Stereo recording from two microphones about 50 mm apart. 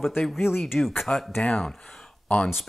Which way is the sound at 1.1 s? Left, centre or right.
Left.